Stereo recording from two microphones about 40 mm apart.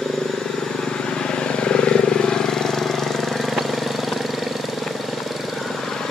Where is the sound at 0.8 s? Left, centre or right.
Left; by 4.6 s centre.